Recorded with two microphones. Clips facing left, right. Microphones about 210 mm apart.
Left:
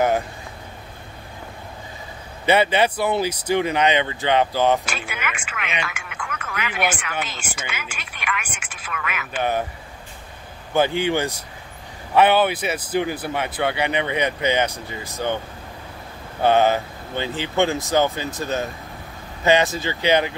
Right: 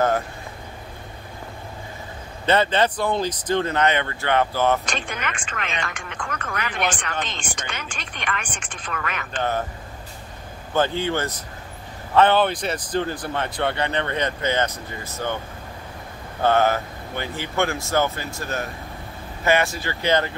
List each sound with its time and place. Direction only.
2.4 s speech: 10° left (ahead or behind)
10.7 s speech: 15° left (ahead or behind)
16.4 s speech: 15° left (ahead or behind)